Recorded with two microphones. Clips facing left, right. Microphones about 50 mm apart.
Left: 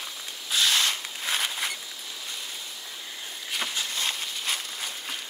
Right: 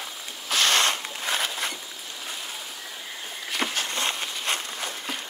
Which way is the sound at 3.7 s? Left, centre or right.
Right.